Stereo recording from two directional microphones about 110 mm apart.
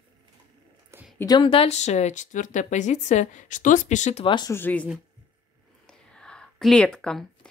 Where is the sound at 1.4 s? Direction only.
60° left (ahead or behind); by 4.2 s 90° left.